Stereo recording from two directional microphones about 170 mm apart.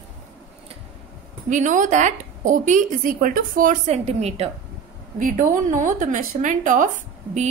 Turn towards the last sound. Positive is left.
turn(degrees=-45)  # may be behind; listen again after turning